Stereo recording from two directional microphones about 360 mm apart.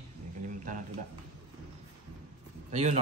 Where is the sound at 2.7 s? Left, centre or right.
Centre.